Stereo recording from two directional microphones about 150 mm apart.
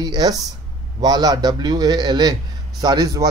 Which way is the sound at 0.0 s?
25° right (ahead or behind).